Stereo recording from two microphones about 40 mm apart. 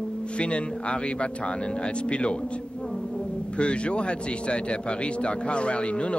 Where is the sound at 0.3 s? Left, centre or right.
Left.